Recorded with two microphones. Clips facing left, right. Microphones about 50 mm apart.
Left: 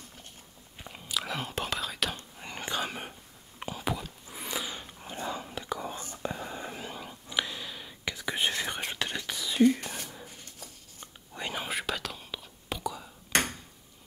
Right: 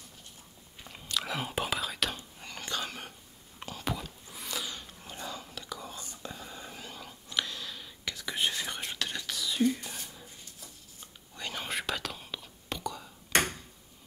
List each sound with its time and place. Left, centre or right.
0.8 s whispering: centre
2.4 s whispering: left
3.7 s a sound: centre
4.3 s whispering: left
11.3 s whispering: centre
11.6 s whispering: centre